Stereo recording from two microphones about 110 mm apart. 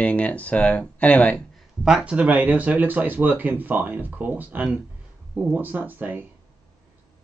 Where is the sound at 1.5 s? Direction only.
5° right (ahead or behind).